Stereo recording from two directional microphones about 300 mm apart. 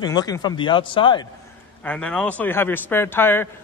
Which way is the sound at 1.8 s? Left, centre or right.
Centre.